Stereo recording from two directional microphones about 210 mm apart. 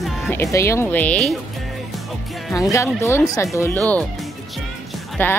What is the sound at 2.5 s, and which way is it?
Speech, 15° left (ahead or behind).